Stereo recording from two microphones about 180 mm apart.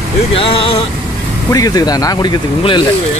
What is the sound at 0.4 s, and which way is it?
Speech, 30° left (ahead or behind).